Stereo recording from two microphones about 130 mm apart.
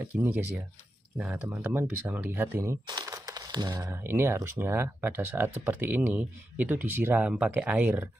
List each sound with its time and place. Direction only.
0.0 s speech: 15° right (ahead or behind)
3.1 s a sound: 30° right (ahead or behind)
3.9 s speech: 15° right (ahead or behind)